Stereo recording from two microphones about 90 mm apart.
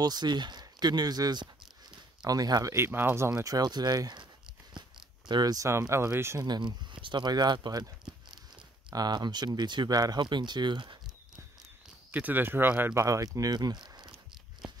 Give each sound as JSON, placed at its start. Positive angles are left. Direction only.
{"t": 0.0, "sound": "speech", "side_deg": -50}
{"t": 2.7, "sound": "speech", "side_deg": -25}
{"t": 3.3, "sound": "speech", "side_deg": -40}
{"t": 5.3, "sound": "speech", "side_deg": -45}
{"t": 5.7, "sound": "speech", "side_deg": -30}
{"t": 6.4, "sound": "speech", "side_deg": -55}
{"t": 8.9, "sound": "speech", "side_deg": -50}
{"t": 12.1, "sound": "speech", "side_deg": -20}
{"t": 12.9, "sound": "speech", "side_deg": -35}
{"t": 14.6, "sound": "a sound", "side_deg": -5}